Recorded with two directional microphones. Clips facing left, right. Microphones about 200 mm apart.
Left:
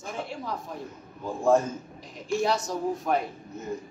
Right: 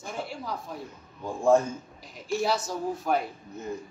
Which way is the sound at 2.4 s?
5° right (ahead or behind).